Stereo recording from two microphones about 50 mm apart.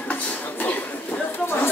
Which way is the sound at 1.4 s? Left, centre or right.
Left.